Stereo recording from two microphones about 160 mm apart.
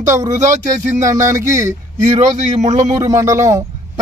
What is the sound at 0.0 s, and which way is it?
Speech, 20° right (ahead or behind).